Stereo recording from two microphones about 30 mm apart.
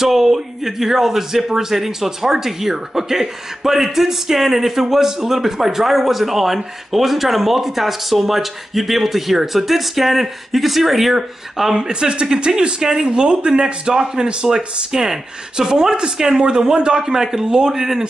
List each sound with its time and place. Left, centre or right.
0.0 s speech: centre
11.9 s a man's voice: right
14.9 s a man's voice: centre